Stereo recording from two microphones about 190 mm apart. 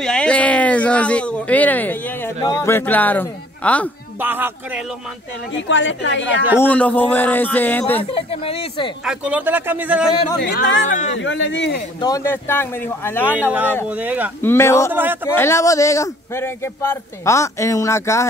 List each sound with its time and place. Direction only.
0.0 s a man's voice: 5° left (ahead or behind)
4.2 s a man's voice: 10° right (ahead or behind)
5.5 s a woman's voice: 75° left (ahead or behind)
6.6 s a man's voice: 10° left (ahead or behind)
8.0 s speech: 30° left (ahead or behind)
9.0 s a man's voice: 5° right (ahead or behind)
10.4 s a woman's voice: 70° left (ahead or behind)
10.9 s a man's voice: 40° left (ahead or behind)
11.1 s a woman's voice: 80° left
12.0 s a man's voice: 15° left (ahead or behind)
13.5 s a man's voice: 10° right (ahead or behind)
14.4 s a man's voice: 15° left (ahead or behind)
14.9 s a man's voice: 10° right (ahead or behind)
15.2 s a man's voice: 15° left (ahead or behind)